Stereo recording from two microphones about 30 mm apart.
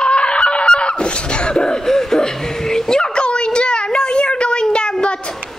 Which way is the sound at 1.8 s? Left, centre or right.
Centre.